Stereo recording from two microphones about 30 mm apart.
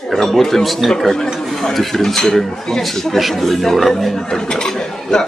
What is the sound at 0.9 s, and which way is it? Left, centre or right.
Speech, centre.